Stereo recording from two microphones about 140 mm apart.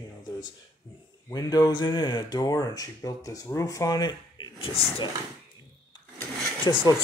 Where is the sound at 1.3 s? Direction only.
25° left (ahead or behind).